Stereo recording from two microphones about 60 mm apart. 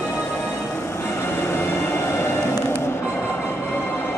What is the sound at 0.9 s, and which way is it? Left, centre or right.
Train, left.